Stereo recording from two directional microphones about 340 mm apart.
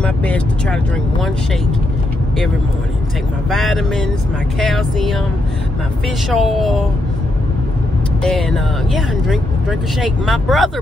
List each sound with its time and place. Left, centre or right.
0.0 s speech: centre
3.4 s speech: centre
6.3 s speech: centre
8.2 s speech: centre